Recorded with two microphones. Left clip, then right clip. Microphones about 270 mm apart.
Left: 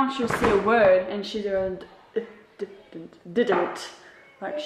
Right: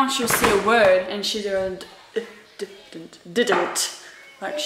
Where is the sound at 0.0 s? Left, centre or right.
Centre.